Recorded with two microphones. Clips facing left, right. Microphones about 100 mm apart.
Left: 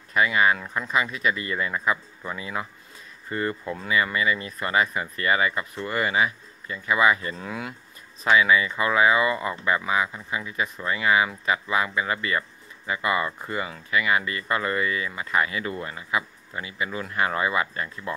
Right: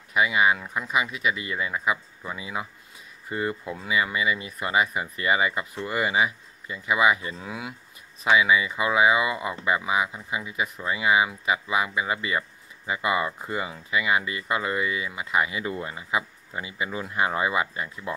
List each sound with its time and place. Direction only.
0.1 s speech: 10° right (ahead or behind)